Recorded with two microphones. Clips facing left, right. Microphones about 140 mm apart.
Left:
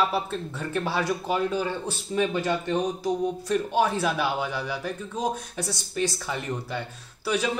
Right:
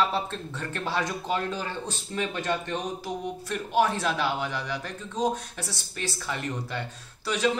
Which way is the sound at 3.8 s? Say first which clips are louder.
Right 3 dB; 15° left (ahead or behind).